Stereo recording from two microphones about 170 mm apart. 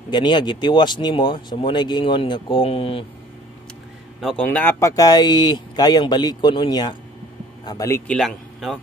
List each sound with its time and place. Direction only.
0.1 s speech: 25° left (ahead or behind)
4.2 s speech: 5° left (ahead or behind); by 8.0 s 20° left (ahead or behind)
8.1 s speech: centre (ahead or behind)